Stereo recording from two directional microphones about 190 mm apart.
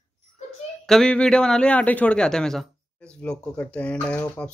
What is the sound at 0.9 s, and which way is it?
A woman's voice, 5° left (ahead or behind).